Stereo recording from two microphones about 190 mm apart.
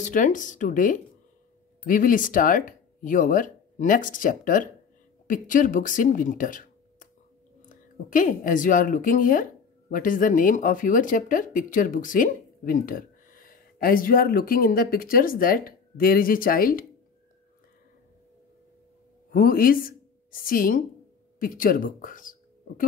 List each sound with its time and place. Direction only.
0.0 s a woman's voice: 40° left (ahead or behind)
19.3 s a woman's voice: 50° left (ahead or behind)